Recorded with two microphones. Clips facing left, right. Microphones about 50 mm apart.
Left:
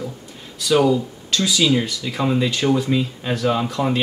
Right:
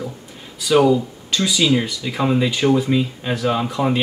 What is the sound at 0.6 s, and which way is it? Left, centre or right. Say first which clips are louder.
Speech: right 2 dB; centre.